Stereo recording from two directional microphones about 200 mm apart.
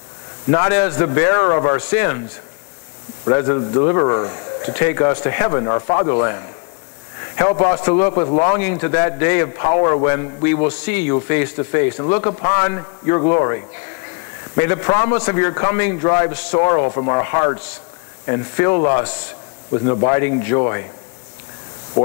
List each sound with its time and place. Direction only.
0.5 s speech: 20° left (ahead or behind)
3.3 s speech: 25° left (ahead or behind)
7.5 s speech: 30° left (ahead or behind)
9.7 s speech: 30° left (ahead or behind)